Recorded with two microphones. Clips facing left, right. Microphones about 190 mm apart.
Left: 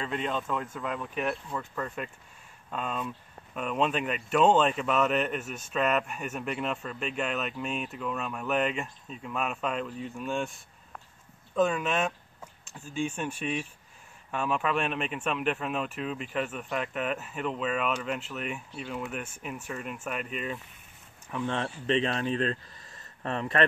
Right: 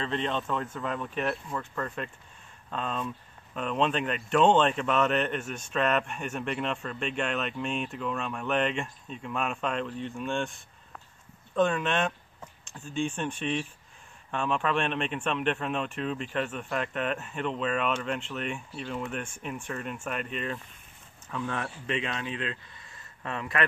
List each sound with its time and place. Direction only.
0.0 s speech: 5° left (ahead or behind)
21.3 s speech: 20° left (ahead or behind)